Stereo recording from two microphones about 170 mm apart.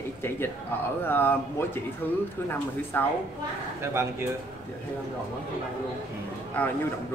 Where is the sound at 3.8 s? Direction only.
15° right (ahead or behind).